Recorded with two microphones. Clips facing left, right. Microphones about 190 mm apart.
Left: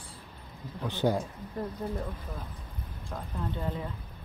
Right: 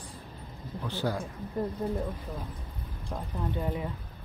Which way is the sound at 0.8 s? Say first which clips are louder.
Left 4 dB; 20° left (ahead or behind).